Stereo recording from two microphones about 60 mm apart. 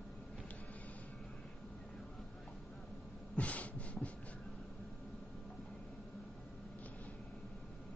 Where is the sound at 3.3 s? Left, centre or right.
Left.